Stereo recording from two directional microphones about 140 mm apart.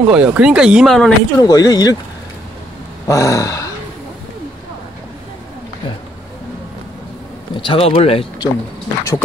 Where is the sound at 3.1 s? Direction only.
25° left (ahead or behind).